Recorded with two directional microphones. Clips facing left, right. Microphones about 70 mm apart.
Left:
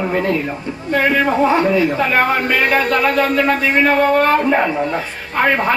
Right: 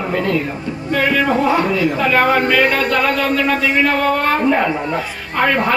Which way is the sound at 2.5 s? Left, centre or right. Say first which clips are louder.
Even; centre.